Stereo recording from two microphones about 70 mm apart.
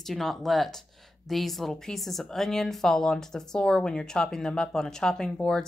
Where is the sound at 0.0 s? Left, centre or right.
Centre.